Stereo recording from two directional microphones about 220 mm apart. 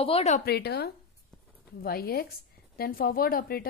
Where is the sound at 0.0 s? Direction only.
30° left (ahead or behind).